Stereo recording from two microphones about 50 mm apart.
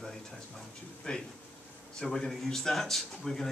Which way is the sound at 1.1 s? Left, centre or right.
Left.